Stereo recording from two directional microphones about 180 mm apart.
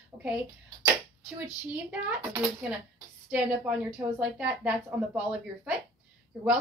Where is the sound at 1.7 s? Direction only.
10° right (ahead or behind).